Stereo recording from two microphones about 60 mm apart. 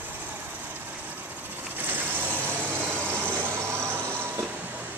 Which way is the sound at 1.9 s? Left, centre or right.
Right.